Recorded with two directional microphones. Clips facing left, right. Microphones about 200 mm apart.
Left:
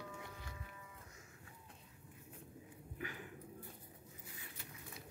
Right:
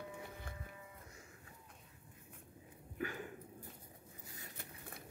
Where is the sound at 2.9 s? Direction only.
45° right (ahead or behind).